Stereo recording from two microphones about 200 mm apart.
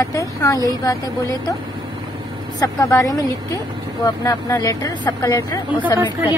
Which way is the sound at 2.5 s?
15° left (ahead or behind).